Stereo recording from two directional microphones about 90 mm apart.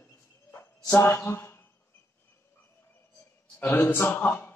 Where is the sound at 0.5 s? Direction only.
30° left (ahead or behind).